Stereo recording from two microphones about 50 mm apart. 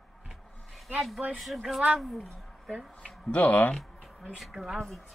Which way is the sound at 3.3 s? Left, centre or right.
Left.